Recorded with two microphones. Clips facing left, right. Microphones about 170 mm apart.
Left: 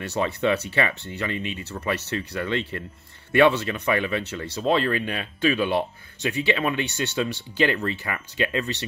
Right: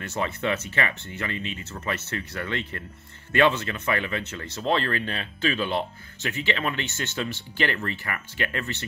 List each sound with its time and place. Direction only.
0.0 s speech: 15° left (ahead or behind)